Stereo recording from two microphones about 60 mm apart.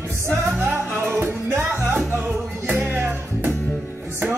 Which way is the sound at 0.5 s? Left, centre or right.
Right.